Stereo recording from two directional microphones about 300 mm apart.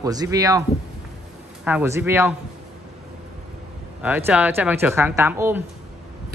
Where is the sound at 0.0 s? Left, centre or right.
Centre.